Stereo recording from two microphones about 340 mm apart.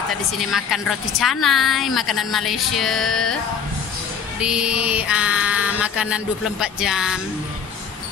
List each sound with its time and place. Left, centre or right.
0.4 s a woman's voice: centre
4.4 s a woman's voice: centre